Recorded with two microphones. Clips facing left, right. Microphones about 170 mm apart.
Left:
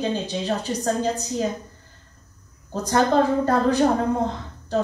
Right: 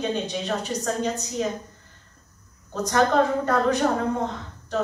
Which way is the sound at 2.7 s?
30° left (ahead or behind).